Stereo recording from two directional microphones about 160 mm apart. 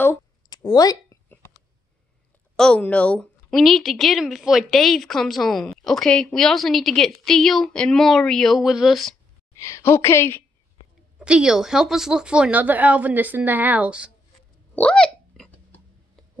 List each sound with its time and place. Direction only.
0.5 s a sound: 25° left (ahead or behind)
2.5 s a woman's voice: 5° left (ahead or behind)
9.6 s a woman's voice: 15° left (ahead or behind)
11.1 s speech: 5° right (ahead or behind)
14.8 s hiccup: 5° left (ahead or behind)